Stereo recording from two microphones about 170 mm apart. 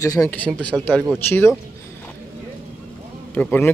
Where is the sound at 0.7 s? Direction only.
5° right (ahead or behind).